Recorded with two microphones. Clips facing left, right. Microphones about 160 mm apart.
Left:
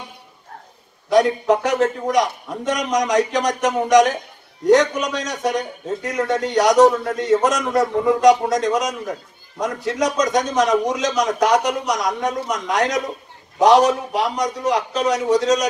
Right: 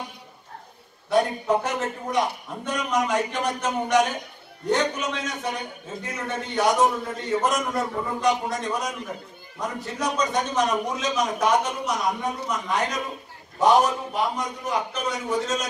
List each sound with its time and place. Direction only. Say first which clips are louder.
1.1 s a man's voice: left 6 dB; 80° left